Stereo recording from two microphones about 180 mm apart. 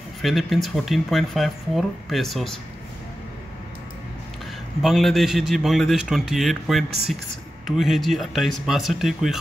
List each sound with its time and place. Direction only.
0.2 s speech: centre (ahead or behind)
4.8 s speech: centre (ahead or behind)